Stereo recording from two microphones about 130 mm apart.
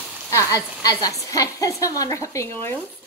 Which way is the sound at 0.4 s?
25° left (ahead or behind).